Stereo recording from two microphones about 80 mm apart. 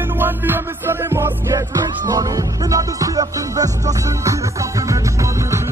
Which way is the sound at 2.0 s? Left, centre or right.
Right.